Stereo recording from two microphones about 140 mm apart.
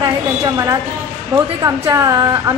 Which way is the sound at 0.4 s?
25° right (ahead or behind).